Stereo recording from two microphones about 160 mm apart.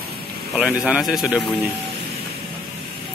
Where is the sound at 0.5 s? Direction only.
5° right (ahead or behind).